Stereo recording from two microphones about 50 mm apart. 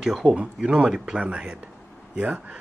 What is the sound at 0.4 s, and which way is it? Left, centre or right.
Speech, right.